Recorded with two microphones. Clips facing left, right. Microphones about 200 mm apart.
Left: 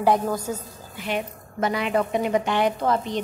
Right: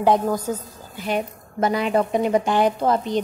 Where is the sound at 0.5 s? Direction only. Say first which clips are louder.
Right 3 dB; 45° right (ahead or behind).